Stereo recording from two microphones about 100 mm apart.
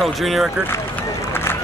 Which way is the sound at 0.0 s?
Centre (ahead or behind).